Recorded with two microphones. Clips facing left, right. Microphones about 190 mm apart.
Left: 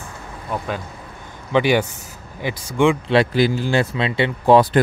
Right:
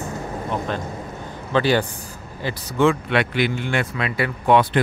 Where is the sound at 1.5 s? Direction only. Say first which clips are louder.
Left 2 dB; 15° left (ahead or behind).